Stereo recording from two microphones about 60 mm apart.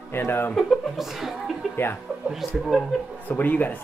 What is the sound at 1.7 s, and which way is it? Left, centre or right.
Speech, left.